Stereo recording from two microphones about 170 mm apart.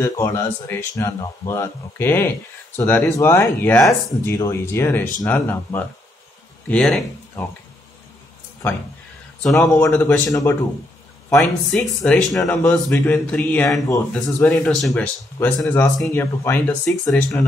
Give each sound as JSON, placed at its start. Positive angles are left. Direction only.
{"t": 0.0, "sound": "speech", "side_deg": 15}
{"t": 9.4, "sound": "speech", "side_deg": 5}
{"t": 10.2, "sound": "speech", "side_deg": 20}
{"t": 11.3, "sound": "speech", "side_deg": 5}
{"t": 13.7, "sound": "speech", "side_deg": 20}
{"t": 14.4, "sound": "speech", "side_deg": 5}
{"t": 15.3, "sound": "speech", "side_deg": 15}